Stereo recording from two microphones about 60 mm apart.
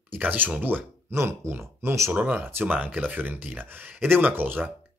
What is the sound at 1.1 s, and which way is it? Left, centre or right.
Speech, right.